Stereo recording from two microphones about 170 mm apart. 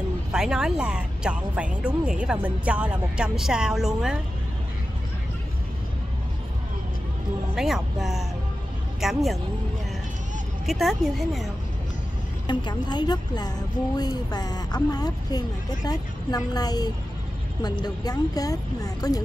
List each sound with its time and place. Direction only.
0.3 s speech: 5° right (ahead or behind)
7.5 s speech: centre (ahead or behind)
10.7 s speech: centre (ahead or behind)
12.4 s speech: 25° left (ahead or behind)